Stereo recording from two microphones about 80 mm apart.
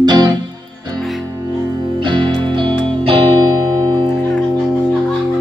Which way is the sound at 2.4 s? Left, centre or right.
Right.